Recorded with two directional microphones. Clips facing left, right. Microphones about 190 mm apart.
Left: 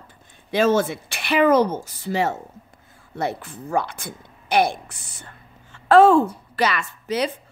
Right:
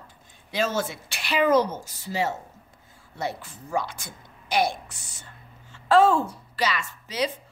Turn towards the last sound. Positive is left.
turn(degrees=60)  # may be behind; listen again after turning